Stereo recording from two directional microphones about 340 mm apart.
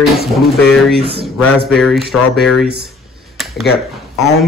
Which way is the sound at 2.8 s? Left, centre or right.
Centre.